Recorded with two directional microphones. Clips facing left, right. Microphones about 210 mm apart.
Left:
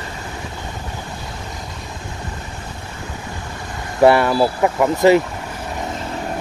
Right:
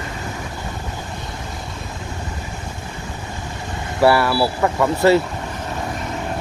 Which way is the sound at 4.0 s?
20° left (ahead or behind).